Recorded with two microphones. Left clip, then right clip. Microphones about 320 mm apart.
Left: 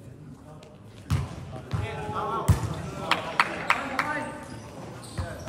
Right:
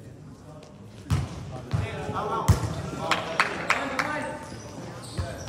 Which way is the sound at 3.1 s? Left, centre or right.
Centre.